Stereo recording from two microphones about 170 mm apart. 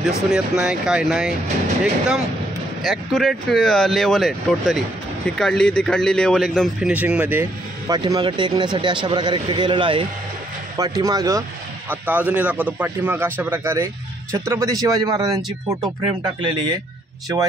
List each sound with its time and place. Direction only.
0.3 s a man's voice: 5° right (ahead or behind)
7.9 s speech: 25° right (ahead or behind)
11.9 s a man's voice: 10° right (ahead or behind); by 16.5 s 25° right (ahead or behind)